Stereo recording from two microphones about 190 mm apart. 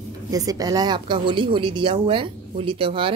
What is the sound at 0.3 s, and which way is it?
A woman's voice, 20° right (ahead or behind).